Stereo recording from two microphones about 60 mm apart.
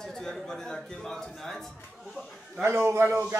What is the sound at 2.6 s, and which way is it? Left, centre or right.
Speech, right.